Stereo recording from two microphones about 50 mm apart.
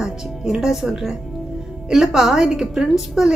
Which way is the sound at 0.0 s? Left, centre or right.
Centre.